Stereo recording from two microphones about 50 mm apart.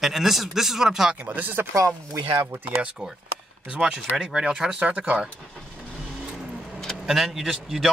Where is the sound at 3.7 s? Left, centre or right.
Centre.